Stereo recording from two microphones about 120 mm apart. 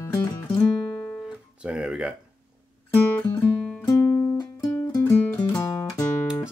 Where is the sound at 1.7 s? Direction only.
10° right (ahead or behind).